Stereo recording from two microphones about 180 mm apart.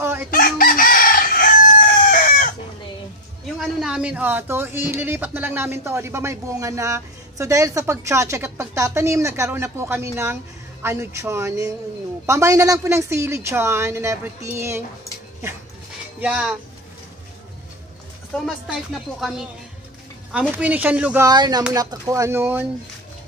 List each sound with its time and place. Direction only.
0.0 s chicken: 10° right (ahead or behind)
0.3 s chicken: 50° left (ahead or behind)
3.5 s speech: 5° right (ahead or behind)
16.2 s a woman's voice: 5° right (ahead or behind)
18.4 s a woman's voice: centre (ahead or behind)
21.3 s speech: 20° right (ahead or behind)